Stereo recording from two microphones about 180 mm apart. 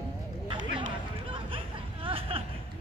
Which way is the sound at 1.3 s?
30° right (ahead or behind).